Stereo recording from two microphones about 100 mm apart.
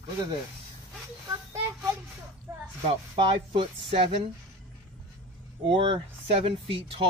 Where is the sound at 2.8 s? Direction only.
55° right (ahead or behind).